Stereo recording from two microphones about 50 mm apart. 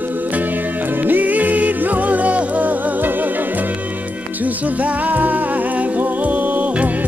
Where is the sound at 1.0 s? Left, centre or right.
Right.